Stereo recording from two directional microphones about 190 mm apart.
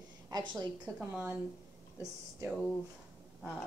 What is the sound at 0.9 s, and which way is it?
Speech, 5° right (ahead or behind).